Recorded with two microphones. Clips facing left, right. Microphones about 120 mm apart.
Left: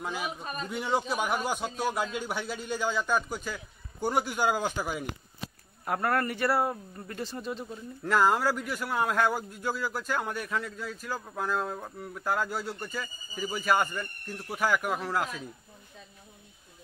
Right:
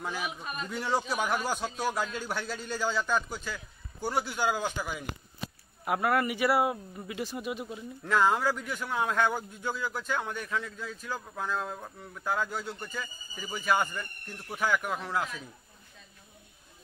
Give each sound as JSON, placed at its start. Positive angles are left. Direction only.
{"t": 0.0, "sound": "a man's voice", "side_deg": 15}
{"t": 0.4, "sound": "a man's voice", "side_deg": 35}
{"t": 0.7, "sound": "a man's voice", "side_deg": 5}
{"t": 5.4, "sound": "speech", "side_deg": -5}
{"t": 8.0, "sound": "a man's voice", "side_deg": 0}